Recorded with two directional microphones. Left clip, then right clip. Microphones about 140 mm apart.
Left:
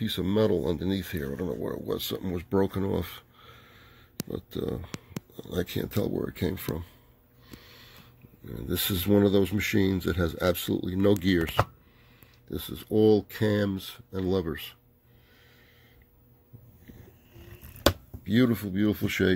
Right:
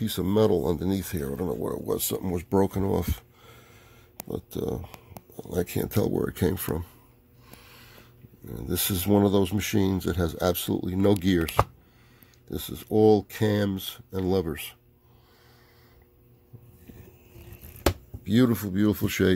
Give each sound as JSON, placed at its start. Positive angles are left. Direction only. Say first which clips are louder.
{"t": 0.0, "sound": "speech", "louder": "right 2 dB", "side_deg": -15}
{"t": 1.5, "sound": "speech", "louder": "right 4 dB", "side_deg": -20}
{"t": 5.8, "sound": "speech", "louder": "right 5 dB", "side_deg": -40}
{"t": 8.5, "sound": "speech", "louder": "even", "side_deg": -10}
{"t": 18.2, "sound": "speech", "louder": "right 2 dB", "side_deg": -25}